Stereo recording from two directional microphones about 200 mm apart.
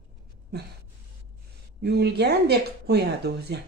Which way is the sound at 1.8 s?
55° right (ahead or behind).